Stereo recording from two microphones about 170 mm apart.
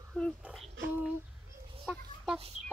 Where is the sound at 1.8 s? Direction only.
Centre (ahead or behind).